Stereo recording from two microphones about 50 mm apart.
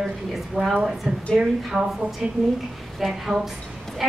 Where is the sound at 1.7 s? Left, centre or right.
Right.